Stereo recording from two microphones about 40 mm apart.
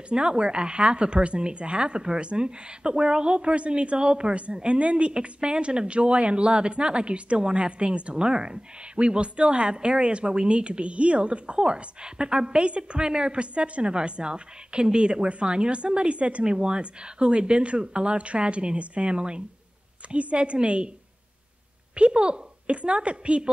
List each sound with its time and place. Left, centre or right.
0.1 s speech: right
16.4 s speech: right
21.9 s speech: right